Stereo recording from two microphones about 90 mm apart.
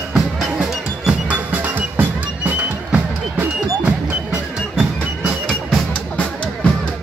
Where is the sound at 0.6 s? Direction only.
10° right (ahead or behind).